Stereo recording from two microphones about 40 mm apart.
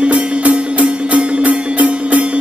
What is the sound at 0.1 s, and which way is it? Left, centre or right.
Music, right.